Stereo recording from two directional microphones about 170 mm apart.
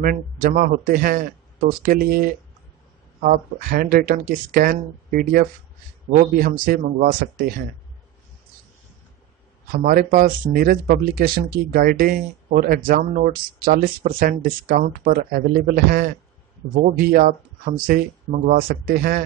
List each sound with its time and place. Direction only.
0.0 s speech: 55° right (ahead or behind)
6.6 s speech: 55° right (ahead or behind)
9.7 s speech: 60° right (ahead or behind)